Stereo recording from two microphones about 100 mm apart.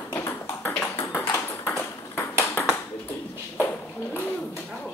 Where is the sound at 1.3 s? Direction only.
20° left (ahead or behind).